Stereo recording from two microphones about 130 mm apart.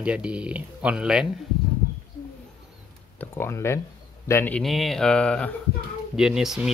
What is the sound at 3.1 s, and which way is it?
A man's voice, 15° left (ahead or behind).